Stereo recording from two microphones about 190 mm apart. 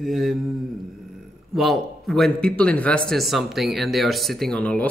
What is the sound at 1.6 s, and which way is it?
Speech, centre (ahead or behind).